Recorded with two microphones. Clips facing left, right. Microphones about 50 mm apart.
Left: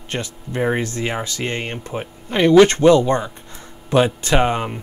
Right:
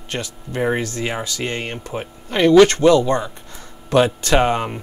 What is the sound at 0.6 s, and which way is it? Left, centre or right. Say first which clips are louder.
Speech: even; centre.